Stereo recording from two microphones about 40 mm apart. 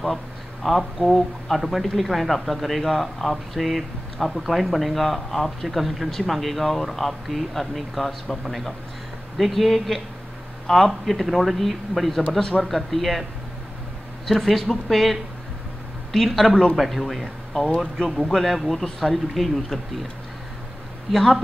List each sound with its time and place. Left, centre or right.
0.7 s speech: centre
12.4 s speech: centre
12.6 s speech: centre
14.2 s speech: centre
21.1 s speech: centre